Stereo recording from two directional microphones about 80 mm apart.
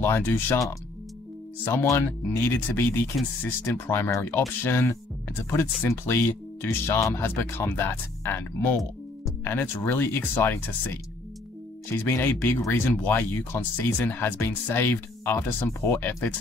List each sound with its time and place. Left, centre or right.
0.0 s speech: left
1.6 s speech: left
11.9 s speech: left
12.5 s speech: left
12.8 s speech: left